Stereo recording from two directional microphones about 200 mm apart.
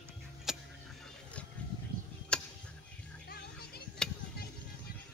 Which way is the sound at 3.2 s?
50° left (ahead or behind).